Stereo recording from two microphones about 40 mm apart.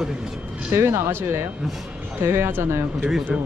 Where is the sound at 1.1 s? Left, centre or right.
Right.